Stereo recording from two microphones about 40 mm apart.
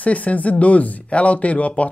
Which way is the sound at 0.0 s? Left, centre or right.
Left.